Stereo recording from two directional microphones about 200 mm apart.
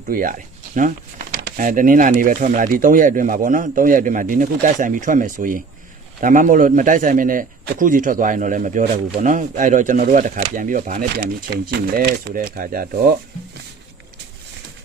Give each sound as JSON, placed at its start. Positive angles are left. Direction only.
{"t": 0.1, "sound": "a man's voice", "side_deg": -45}
{"t": 11.5, "sound": "speech", "side_deg": -55}